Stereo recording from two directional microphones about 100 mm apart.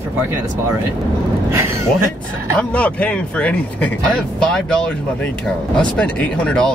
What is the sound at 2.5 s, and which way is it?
Speech, 15° left (ahead or behind).